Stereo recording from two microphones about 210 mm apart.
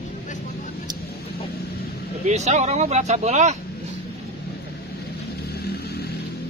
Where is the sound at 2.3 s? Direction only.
30° right (ahead or behind).